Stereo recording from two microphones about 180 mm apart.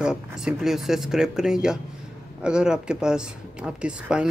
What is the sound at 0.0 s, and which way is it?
Speech, 5° right (ahead or behind).